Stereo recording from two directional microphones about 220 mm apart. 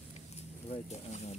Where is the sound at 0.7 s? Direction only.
30° left (ahead or behind).